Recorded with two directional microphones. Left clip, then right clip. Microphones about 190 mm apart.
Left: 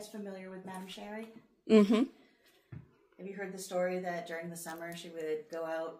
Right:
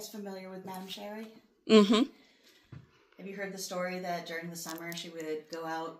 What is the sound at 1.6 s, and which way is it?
Speech, 5° right (ahead or behind).